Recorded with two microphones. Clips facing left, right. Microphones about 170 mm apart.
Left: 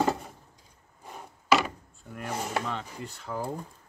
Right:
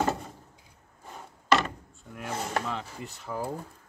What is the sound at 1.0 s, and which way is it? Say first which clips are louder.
Wood: left 1 dB; 5° left (ahead or behind).